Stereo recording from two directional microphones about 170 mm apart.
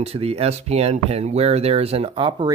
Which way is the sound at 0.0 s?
35° right (ahead or behind).